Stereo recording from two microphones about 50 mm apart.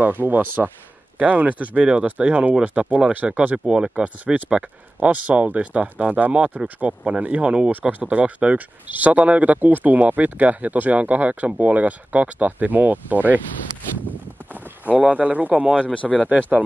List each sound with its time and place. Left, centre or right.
0.0 s speech: right
14.0 s clip-clop: right
15.6 s speech: right
15.9 s speech: left
16.3 s speech: right